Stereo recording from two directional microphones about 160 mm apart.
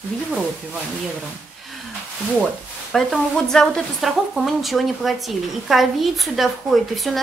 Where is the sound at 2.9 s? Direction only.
5° left (ahead or behind).